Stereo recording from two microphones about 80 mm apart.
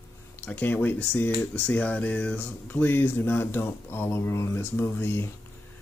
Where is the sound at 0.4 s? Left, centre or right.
Left.